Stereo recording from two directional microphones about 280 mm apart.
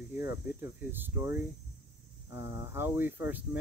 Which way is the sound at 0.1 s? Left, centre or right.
Centre.